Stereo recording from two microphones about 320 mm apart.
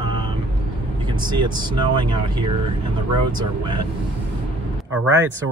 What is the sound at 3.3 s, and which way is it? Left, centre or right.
Speech, centre.